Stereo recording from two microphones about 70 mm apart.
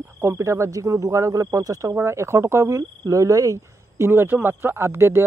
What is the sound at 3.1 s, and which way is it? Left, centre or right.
Speech, right.